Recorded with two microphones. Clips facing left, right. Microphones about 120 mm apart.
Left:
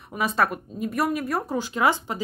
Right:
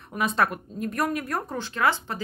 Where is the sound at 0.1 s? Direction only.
5° left (ahead or behind).